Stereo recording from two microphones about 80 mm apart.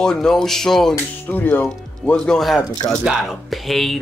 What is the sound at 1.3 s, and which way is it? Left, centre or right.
Speech, left.